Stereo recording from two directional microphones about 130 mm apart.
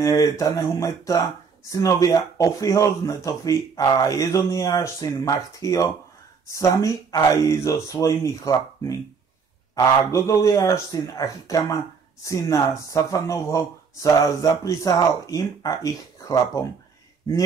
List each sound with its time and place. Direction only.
0.0 s speech: 25° left (ahead or behind)